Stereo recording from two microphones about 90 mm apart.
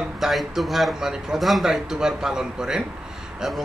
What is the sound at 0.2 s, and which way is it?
A man's voice, centre (ahead or behind).